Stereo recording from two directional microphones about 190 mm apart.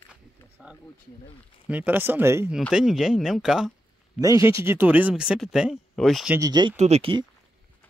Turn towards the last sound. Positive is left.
turn(degrees=-30)  # may be behind; listen again after turning